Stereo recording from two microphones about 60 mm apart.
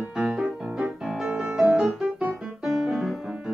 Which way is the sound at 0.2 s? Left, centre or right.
Centre.